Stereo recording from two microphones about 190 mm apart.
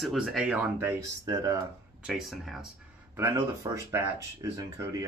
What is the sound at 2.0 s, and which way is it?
Speech, centre (ahead or behind).